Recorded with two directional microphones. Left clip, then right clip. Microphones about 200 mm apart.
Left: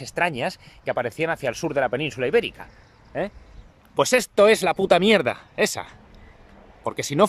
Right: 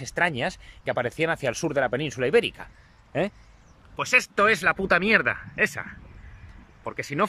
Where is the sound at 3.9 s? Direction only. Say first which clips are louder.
Left 2 dB; 30° left (ahead or behind).